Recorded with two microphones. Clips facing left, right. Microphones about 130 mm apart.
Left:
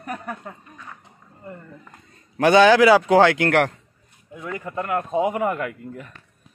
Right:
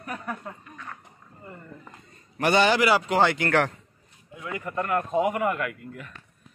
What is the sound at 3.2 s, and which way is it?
Speech, 90° left.